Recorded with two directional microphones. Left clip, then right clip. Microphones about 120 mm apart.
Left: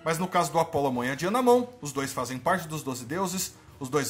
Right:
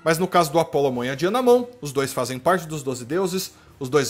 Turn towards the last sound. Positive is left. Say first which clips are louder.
# right 8 dB
turn(degrees=-30)  # may be behind; listen again after turning